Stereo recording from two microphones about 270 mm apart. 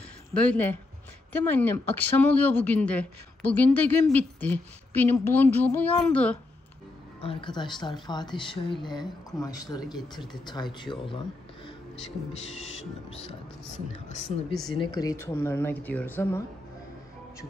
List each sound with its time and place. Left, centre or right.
0.3 s speech: centre
7.2 s speech: centre
8.7 s speech: centre
9.4 s speech: centre
14.9 s speech: centre